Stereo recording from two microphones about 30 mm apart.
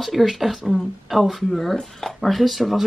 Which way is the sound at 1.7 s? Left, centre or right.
Centre.